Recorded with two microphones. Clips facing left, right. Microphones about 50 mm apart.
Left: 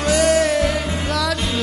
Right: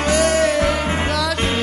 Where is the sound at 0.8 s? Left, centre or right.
Right.